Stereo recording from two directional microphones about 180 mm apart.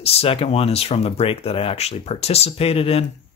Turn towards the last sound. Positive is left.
turn(degrees=35)  # may be behind; listen again after turning